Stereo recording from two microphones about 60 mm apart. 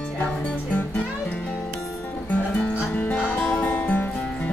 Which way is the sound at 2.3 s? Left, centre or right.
Left.